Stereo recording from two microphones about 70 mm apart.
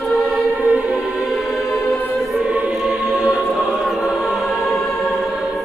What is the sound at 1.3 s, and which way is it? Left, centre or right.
Choir, centre.